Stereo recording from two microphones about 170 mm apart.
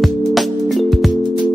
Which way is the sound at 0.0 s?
Centre (ahead or behind).